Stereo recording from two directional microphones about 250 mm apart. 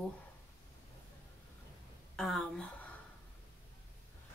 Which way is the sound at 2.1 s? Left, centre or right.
Centre.